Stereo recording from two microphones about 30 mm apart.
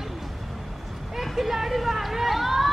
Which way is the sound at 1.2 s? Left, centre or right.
Centre.